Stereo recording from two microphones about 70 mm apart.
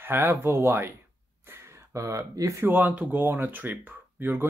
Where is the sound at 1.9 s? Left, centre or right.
Right.